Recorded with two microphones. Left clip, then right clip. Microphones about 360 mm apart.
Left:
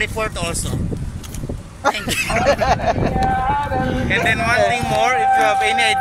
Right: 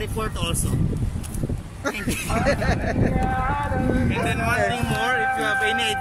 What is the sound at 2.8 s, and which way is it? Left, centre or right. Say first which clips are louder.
Speech: left 7 dB; left.